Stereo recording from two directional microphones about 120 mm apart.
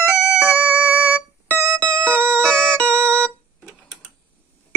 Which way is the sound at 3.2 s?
5° left (ahead or behind).